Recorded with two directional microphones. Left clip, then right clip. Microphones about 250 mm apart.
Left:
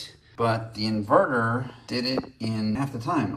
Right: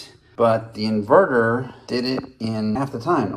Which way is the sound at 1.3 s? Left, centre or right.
Right.